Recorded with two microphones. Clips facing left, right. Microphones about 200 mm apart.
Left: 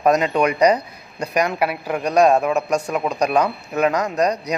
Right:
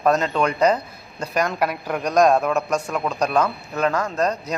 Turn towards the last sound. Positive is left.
turn(degrees=15)  # may be behind; listen again after turning